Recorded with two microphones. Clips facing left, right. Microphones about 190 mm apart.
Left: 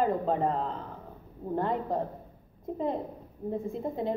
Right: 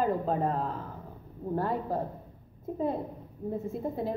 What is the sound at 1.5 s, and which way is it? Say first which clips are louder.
Speech: left 1 dB; 20° left (ahead or behind).